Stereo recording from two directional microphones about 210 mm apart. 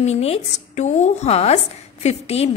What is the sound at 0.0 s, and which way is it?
A woman's voice, 30° left (ahead or behind).